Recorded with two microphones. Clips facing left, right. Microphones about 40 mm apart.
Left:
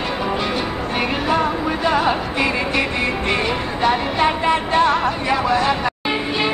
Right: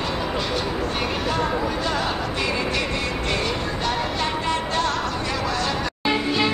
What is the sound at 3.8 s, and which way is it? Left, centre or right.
Music, left.